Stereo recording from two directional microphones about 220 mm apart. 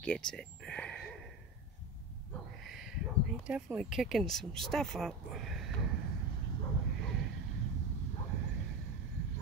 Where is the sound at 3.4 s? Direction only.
5° right (ahead or behind).